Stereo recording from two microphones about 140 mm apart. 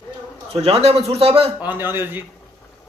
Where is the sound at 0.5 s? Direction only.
45° right (ahead or behind).